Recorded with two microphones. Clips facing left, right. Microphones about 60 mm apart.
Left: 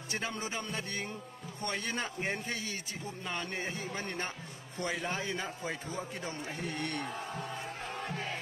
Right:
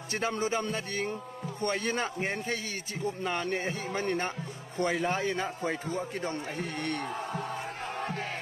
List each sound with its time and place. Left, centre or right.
0.1 s a man's voice: right
7.2 s music: right